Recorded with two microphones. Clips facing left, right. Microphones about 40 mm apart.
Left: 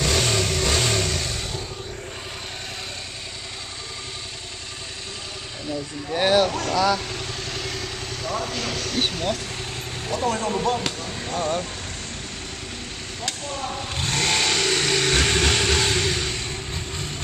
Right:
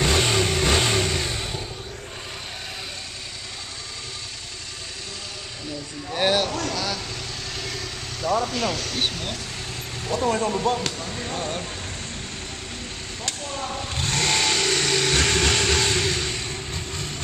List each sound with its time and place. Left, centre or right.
0.0 s vehicle: centre
6.0 s a sound: centre
6.7 s vehicle: centre
8.2 s vehicle: centre
8.7 s speech: centre
10.1 s speech: right
10.5 s speech: centre
11.0 s a sound: centre
13.2 s vehicle: centre